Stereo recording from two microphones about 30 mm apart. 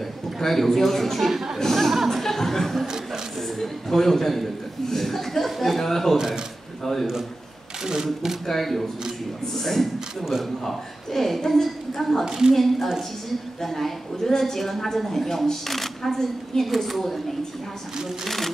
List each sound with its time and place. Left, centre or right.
0.4 s a man's voice: centre
1.3 s a woman's voice: centre
2.2 s a man's voice: centre
6.1 s speech: centre
6.8 s a man's voice: centre
7.8 s speech: centre
8.5 s a man's voice: centre
9.9 s speech: centre
10.6 s a man's voice: centre
12.3 s a woman's voice: right
12.5 s a man's voice: centre
16.6 s a woman's voice: centre
18.2 s a man's voice: centre